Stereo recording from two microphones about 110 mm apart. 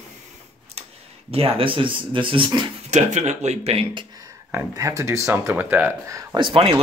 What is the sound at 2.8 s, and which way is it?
Speech, 90° right.